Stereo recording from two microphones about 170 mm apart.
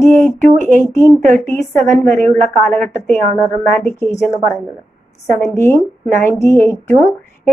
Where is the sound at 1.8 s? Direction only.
45° right (ahead or behind).